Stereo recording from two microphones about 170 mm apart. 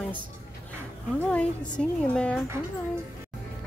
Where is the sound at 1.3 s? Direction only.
5° left (ahead or behind).